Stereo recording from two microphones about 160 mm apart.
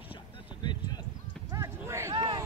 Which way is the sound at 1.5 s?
20° right (ahead or behind).